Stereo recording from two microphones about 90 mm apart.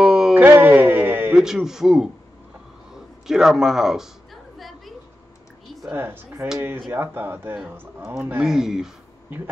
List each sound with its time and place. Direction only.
0.0 s a sound: 5° right (ahead or behind)
0.4 s music: 20° right (ahead or behind)
1.3 s speech: 5° right (ahead or behind)
2.9 s a sound: 5° right (ahead or behind)
5.9 s speech: 20° right (ahead or behind)
8.5 s speech: 5° right (ahead or behind)